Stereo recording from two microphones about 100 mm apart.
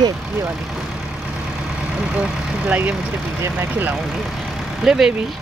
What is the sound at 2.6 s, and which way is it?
Speech, 15° right (ahead or behind).